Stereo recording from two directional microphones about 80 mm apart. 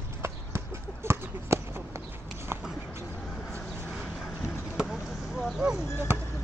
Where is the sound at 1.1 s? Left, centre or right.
Right.